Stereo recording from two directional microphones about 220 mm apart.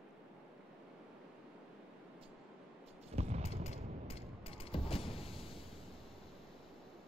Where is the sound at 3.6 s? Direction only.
30° left (ahead or behind).